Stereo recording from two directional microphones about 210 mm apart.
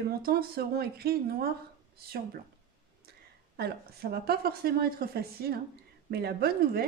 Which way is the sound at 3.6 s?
50° right (ahead or behind).